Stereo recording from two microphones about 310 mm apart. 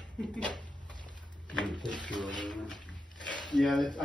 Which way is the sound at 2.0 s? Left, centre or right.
Left.